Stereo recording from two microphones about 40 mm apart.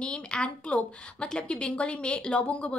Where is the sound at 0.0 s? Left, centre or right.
Left.